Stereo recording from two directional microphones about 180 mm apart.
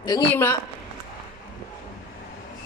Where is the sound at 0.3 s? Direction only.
10° left (ahead or behind).